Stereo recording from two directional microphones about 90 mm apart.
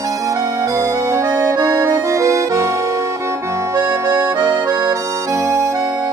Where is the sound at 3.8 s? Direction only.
30° right (ahead or behind).